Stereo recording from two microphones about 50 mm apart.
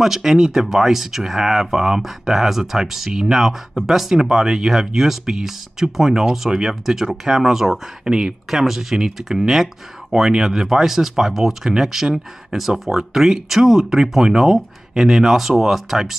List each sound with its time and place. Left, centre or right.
0.0 s speech: centre
8.1 s speech: centre
8.5 s speech: centre